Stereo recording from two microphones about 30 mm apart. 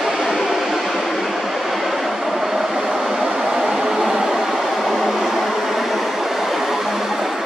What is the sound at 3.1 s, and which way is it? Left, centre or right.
Train, centre.